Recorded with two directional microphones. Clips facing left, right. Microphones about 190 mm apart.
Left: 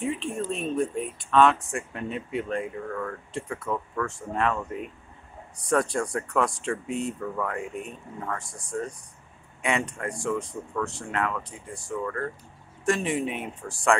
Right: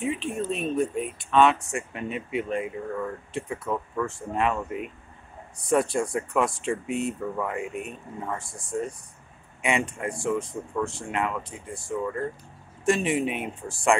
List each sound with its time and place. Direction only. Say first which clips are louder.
0.0 s speech: right 1 dB; 5° right (ahead or behind)
2.9 s speech: right 2 dB; 15° right (ahead or behind)
9.6 s speech: right 1 dB; 10° right (ahead or behind)